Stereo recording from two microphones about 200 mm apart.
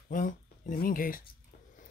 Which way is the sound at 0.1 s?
40° left (ahead or behind).